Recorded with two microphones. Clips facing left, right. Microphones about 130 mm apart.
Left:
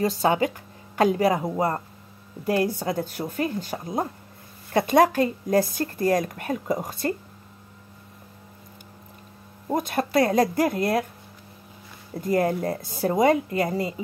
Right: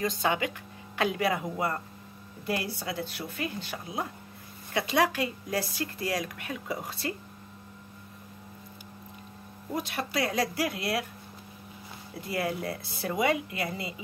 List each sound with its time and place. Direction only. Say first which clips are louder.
0.0 s speech: left 7 dB; 35° left (ahead or behind)
9.7 s speech: left 8 dB; 45° left (ahead or behind)
12.1 s speech: left 9 dB; 45° left (ahead or behind)